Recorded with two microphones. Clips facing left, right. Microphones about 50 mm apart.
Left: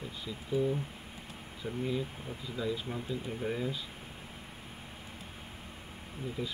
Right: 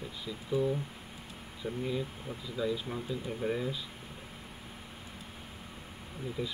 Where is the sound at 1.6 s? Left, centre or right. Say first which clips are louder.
Right 1 dB; centre.